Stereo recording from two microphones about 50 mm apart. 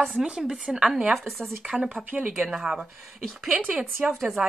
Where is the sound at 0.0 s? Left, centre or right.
Centre.